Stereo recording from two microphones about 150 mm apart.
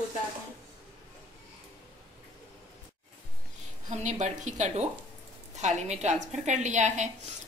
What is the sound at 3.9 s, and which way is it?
A woman's voice, 55° right (ahead or behind).